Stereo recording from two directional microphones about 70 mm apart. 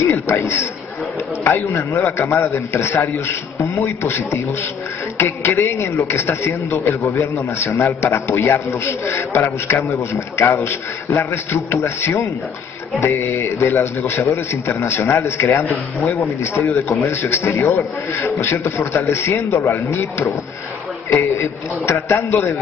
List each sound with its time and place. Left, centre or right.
0.0 s a man's voice: left